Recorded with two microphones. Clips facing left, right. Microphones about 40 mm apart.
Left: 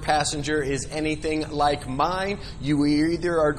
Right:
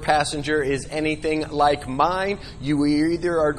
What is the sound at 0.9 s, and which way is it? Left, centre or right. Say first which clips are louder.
Speech: right 3 dB; right.